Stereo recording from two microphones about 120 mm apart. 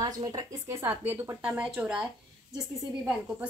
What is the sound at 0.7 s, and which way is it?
Speech, 20° right (ahead or behind).